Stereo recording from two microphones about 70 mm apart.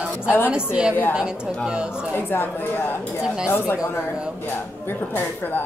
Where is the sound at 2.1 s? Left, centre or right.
Left.